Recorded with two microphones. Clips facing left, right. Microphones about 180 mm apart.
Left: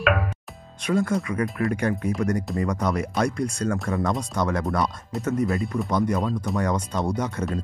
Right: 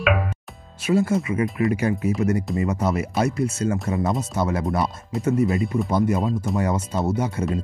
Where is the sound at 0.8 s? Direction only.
5° right (ahead or behind).